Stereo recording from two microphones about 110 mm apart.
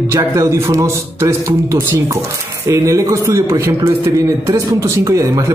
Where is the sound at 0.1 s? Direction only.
30° right (ahead or behind).